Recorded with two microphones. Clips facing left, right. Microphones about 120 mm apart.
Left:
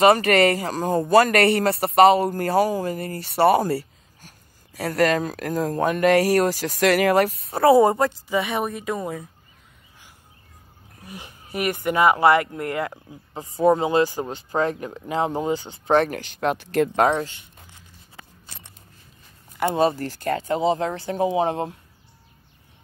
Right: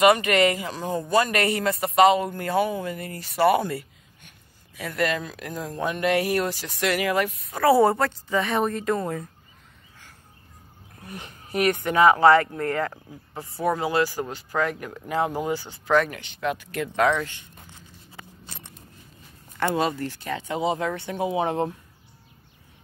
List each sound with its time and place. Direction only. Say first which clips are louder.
0.0 s speech: left 2 dB; 40° left (ahead or behind)
1.4 s speech: left 6 dB; 65° left (ahead or behind)
1.7 s speech: left 1 dB; 30° left (ahead or behind)
3.3 s a sound: left 3 dB; 35° left (ahead or behind)
4.7 s speech: left 6 dB; 40° left (ahead or behind)
7.7 s a woman's voice: left 2 dB; 15° left (ahead or behind)
11.1 s speech: right 1 dB; 15° left (ahead or behind)
16.1 s speech: left 4 dB; 40° left (ahead or behind)
17.0 s speech: right 2 dB; 30° left (ahead or behind)
19.6 s speech: left 4 dB; 25° left (ahead or behind)
20.0 s speech: left 5 dB; 45° left (ahead or behind)